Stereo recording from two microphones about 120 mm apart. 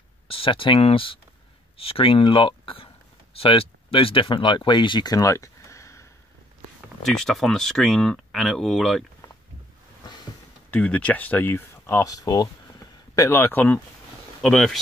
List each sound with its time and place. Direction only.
0.3 s speech: 50° left (ahead or behind); by 6.0 s 25° left (ahead or behind)
7.2 s speech: 5° left (ahead or behind)
10.7 s speech: 10° left (ahead or behind); by 13.3 s 30° left (ahead or behind)
13.3 s speech: 15° left (ahead or behind)
14.4 s speech: 5° left (ahead or behind)